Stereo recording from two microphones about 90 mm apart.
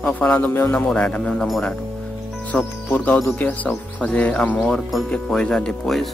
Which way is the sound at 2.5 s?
15° left (ahead or behind).